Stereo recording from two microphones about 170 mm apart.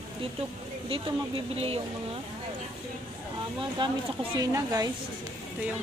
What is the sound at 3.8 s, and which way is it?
A woman's voice, 25° right (ahead or behind).